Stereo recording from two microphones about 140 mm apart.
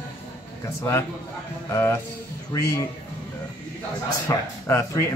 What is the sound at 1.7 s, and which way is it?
Speech, 20° left (ahead or behind).